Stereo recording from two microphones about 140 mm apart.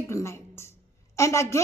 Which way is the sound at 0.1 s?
20° left (ahead or behind).